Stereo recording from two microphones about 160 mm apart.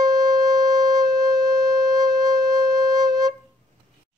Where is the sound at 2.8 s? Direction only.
25° right (ahead or behind).